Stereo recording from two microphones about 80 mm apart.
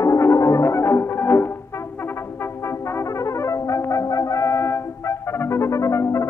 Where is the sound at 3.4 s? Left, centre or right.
Left.